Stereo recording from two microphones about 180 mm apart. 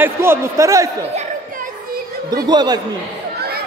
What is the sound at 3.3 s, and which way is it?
Children playing, 60° right (ahead or behind).